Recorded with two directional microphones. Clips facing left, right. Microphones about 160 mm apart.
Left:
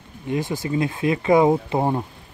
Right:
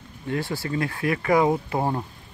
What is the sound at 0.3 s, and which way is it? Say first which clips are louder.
Speech: left 3 dB; 20° left (ahead or behind).